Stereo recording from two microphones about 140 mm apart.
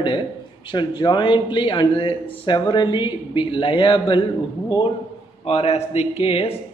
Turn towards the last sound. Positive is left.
turn(degrees=45)  # may be behind; listen again after turning